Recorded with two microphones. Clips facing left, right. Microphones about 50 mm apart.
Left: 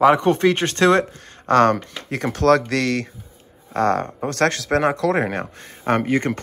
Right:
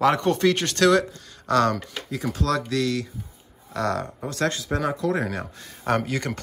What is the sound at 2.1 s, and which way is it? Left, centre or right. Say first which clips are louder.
Speech: left 9 dB; left.